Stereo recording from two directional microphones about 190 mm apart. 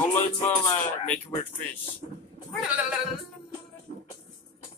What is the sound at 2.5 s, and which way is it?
Speech, centre (ahead or behind).